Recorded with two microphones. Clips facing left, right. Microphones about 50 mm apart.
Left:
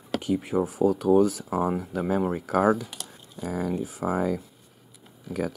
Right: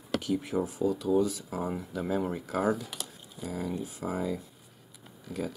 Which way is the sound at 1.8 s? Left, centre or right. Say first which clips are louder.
Left 5 dB; left.